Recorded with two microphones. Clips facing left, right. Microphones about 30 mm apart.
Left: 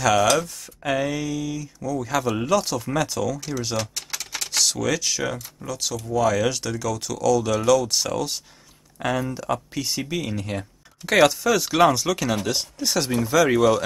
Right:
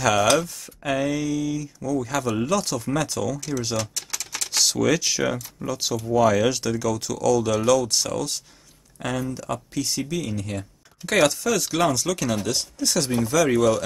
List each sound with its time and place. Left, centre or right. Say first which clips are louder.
0.0 s speech: even; centre
3.9 s typing: left 1 dB; centre
4.5 s speech: right 2 dB; centre